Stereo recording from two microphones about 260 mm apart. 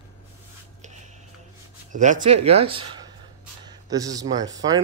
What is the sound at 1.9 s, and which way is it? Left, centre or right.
Speech, right.